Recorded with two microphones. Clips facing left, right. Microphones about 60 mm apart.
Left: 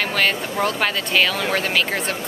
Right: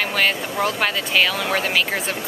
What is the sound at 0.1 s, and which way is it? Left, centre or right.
Speech, centre.